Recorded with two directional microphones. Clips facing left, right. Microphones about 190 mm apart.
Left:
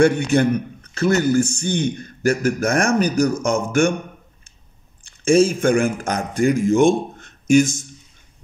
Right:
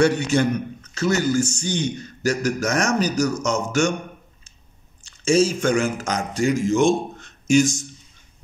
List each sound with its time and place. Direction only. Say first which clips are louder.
0.0 s speech: left 3 dB; 55° left (ahead or behind)
5.0 s a man's voice: left 3 dB; 55° left (ahead or behind)